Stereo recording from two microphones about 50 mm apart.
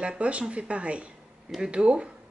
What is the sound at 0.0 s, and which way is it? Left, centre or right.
Speech, right.